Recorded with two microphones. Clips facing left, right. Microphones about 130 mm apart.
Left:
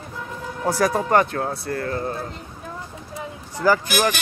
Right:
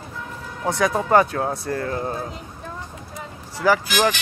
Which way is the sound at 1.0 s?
20° right (ahead or behind).